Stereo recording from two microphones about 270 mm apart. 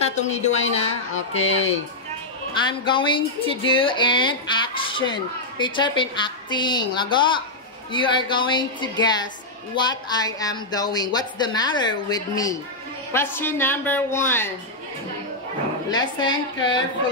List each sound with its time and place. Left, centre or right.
0.0 s speech: left
2.8 s speech: centre
15.9 s speech: centre